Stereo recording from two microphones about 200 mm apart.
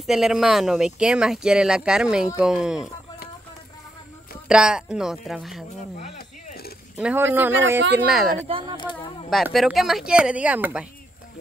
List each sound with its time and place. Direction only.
0.0 s speech: centre (ahead or behind)
4.5 s speech: 5° right (ahead or behind)
6.1 s a sound: 50° left (ahead or behind)
7.0 s speech: 10° right (ahead or behind)
8.5 s speech: 25° right (ahead or behind)
8.7 s speech: 25° left (ahead or behind)
9.3 s speech: centre (ahead or behind)